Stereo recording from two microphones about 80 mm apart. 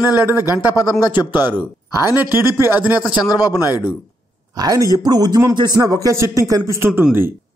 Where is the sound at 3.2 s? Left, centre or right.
Left.